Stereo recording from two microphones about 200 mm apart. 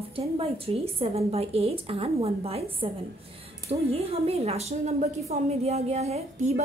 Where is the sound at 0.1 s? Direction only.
30° right (ahead or behind).